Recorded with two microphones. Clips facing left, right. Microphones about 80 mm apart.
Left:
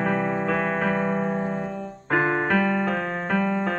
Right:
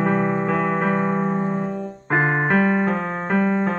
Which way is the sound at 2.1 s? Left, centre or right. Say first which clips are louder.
Right 2 dB; right.